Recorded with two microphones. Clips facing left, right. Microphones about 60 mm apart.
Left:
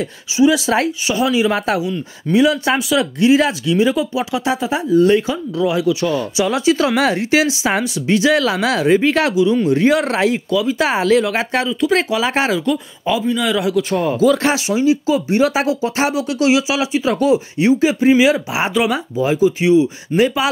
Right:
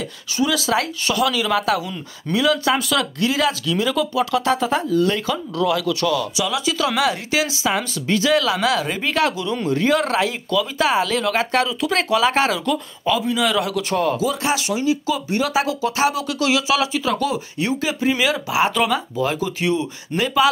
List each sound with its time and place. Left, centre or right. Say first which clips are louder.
0.4 s speech: left 6 dB; left; by 4.8 s centre
4.8 s speech: left 6 dB; left
6.0 s speech: left 3 dB; left
9.3 s speech: left 10 dB; centre
9.7 s speech: left 4 dB; left
12.5 s speech: left 4 dB; centre
14.2 s speech: left 8 dB; left
14.5 s speech: left 5 dB; left
16.4 s speech: left 3 dB; centre